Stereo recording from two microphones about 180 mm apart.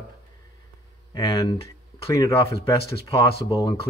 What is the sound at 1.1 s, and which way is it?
Speech, 20° left (ahead or behind).